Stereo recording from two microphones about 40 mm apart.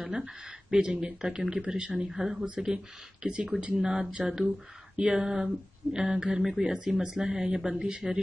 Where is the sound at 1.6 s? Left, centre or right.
Right.